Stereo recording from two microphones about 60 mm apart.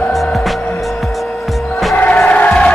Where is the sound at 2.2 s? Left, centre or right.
Left.